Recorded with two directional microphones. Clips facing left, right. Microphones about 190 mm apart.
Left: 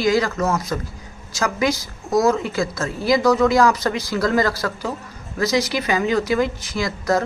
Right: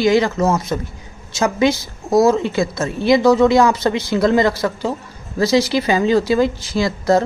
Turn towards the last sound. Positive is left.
turn(degrees=-30)  # may be behind; listen again after turning